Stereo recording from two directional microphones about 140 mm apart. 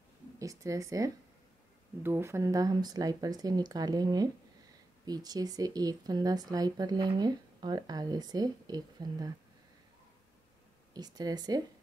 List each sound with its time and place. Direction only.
0.4 s speech: 25° right (ahead or behind)
10.9 s speech: 30° right (ahead or behind)